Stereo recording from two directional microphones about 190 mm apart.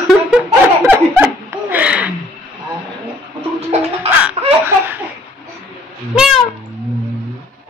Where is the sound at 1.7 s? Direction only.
5° right (ahead or behind).